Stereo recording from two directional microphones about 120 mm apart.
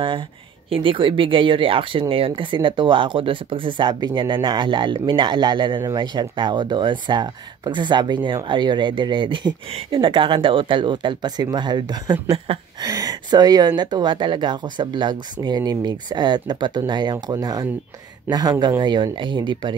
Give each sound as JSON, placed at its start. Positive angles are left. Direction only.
{"t": 0.7, "sound": "speech", "side_deg": -45}